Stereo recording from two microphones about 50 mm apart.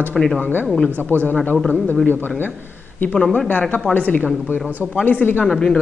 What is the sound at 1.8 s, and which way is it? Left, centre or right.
Speech, left.